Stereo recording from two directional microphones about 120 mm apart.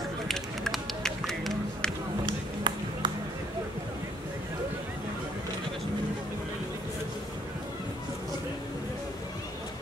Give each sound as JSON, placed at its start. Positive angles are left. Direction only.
{"t": 0.3, "sound": "music", "side_deg": 5}
{"t": 2.2, "sound": "music", "side_deg": -40}